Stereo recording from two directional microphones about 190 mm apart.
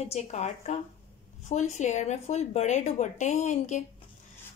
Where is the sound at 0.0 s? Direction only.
35° left (ahead or behind).